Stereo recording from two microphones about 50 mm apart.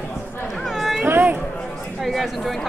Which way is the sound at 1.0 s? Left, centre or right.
Right.